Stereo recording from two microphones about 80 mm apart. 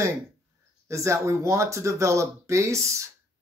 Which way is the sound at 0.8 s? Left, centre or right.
Right.